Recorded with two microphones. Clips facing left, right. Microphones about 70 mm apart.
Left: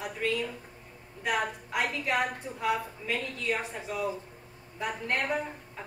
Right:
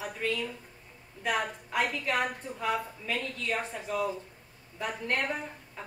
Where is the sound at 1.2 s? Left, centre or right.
Centre.